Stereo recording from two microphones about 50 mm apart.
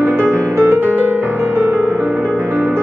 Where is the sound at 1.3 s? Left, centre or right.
Right.